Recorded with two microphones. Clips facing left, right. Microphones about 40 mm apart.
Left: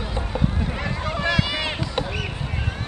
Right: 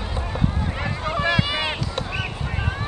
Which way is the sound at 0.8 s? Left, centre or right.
Centre.